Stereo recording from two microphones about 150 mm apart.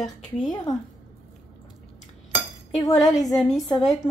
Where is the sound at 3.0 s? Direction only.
25° left (ahead or behind).